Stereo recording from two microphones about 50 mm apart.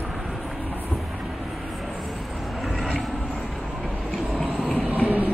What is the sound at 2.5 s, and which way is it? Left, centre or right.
Vehicle, centre.